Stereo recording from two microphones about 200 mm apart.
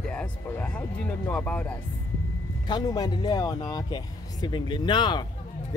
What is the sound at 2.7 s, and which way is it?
Speech, 20° left (ahead or behind).